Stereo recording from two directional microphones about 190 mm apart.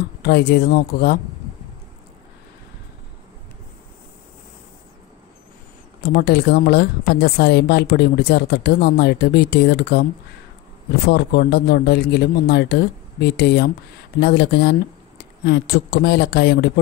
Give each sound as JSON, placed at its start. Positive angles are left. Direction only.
{"t": 0.2, "sound": "a woman's voice", "side_deg": 60}
{"t": 6.0, "sound": "a woman's voice", "side_deg": 55}
{"t": 11.1, "sound": "a woman's voice", "side_deg": 55}